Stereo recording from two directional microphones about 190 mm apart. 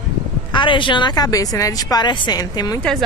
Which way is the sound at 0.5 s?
25° left (ahead or behind).